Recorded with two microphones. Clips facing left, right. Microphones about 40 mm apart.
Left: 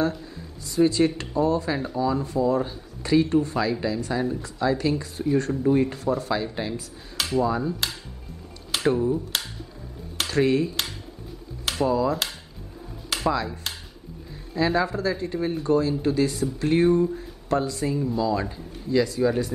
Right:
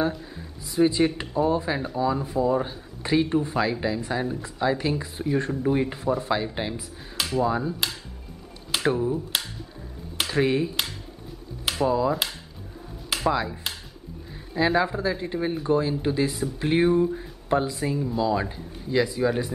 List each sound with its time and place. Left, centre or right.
0.1 s speech: centre
7.2 s a sound: centre
7.4 s speech: centre
10.3 s speech: centre
13.1 s a sound: centre
14.5 s speech: centre